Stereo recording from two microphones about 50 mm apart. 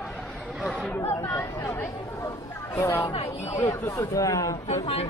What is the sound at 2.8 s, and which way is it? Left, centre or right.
Speech, left.